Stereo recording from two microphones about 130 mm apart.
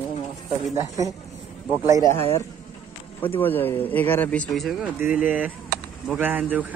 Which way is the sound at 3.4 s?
15° left (ahead or behind).